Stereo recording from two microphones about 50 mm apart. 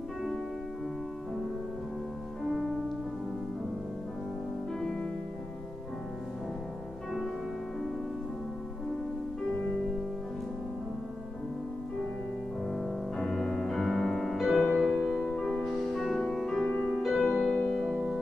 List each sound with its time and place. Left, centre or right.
2.4 s music: centre
9.5 s music: centre
12.6 s music: centre
15.2 s music: centre